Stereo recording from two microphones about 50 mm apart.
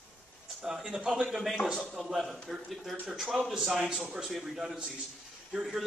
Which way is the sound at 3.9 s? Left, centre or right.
Centre.